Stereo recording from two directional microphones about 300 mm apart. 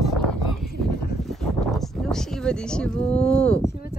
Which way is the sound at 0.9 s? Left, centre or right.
Left.